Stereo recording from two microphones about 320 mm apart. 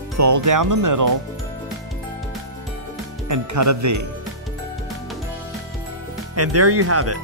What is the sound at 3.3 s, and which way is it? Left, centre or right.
Speech, right.